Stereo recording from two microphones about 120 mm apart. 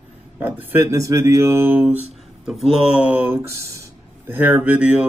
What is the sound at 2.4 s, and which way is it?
Speech, centre (ahead or behind).